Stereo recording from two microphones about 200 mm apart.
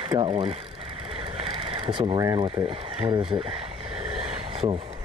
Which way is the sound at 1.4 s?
25° right (ahead or behind).